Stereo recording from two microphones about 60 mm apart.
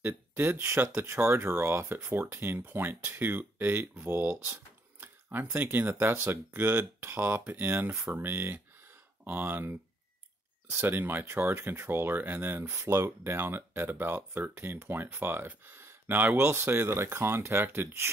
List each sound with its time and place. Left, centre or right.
0.0 s speech: right
16.4 s speech: right